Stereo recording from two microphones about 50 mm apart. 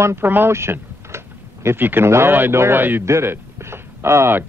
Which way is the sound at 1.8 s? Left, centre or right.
Right.